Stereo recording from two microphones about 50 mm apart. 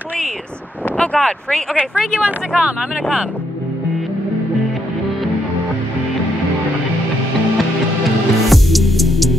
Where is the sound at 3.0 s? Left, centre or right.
Centre.